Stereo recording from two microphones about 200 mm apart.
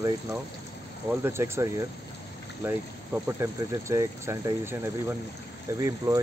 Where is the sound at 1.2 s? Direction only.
15° right (ahead or behind).